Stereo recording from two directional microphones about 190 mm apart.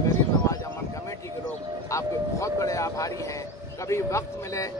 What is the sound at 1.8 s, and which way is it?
A man's voice, 15° left (ahead or behind).